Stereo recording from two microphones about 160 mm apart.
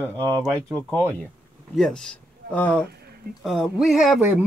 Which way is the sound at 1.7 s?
5° left (ahead or behind).